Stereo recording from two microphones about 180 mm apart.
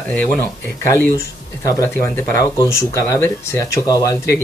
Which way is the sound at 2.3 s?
15° left (ahead or behind).